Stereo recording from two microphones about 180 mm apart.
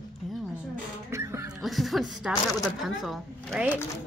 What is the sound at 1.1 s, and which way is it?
Music, 15° right (ahead or behind).